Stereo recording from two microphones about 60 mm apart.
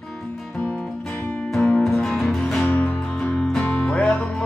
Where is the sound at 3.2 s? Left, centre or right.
Centre.